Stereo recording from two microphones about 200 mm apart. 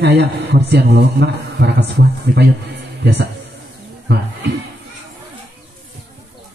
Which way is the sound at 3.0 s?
55° right (ahead or behind).